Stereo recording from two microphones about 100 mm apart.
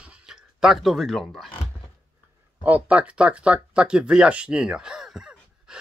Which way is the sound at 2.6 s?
15° right (ahead or behind).